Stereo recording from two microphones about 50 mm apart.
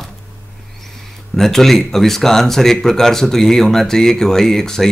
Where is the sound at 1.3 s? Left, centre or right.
Centre.